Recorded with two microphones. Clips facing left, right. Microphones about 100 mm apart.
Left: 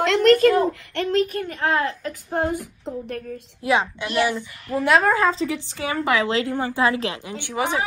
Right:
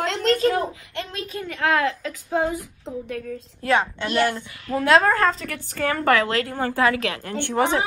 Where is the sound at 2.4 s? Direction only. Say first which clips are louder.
Left 1 dB; 60° left (ahead or behind).